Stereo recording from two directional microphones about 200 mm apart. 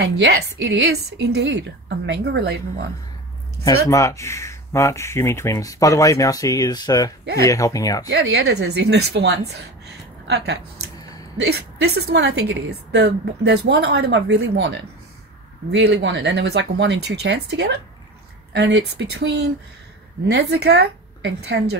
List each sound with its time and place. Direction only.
0.2 s a woman's voice: 60° right (ahead or behind)
3.6 s speech: 15° left (ahead or behind)
8.1 s a woman's voice: 55° right (ahead or behind)